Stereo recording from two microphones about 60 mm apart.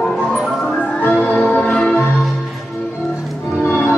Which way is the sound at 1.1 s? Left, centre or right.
Left.